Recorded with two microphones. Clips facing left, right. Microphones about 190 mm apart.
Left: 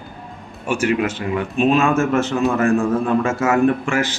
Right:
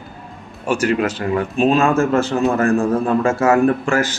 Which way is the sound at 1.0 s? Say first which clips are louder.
Right 2 dB; 40° right (ahead or behind).